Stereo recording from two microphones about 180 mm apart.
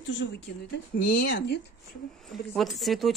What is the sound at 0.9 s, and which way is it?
Speech, 55° left (ahead or behind).